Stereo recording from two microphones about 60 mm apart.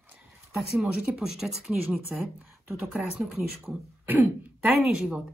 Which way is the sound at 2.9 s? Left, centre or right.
Centre.